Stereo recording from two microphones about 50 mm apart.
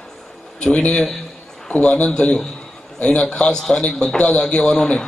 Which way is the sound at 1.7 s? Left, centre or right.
Left.